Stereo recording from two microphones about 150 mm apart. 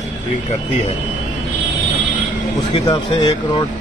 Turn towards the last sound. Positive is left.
turn(degrees=30)  # may be behind; listen again after turning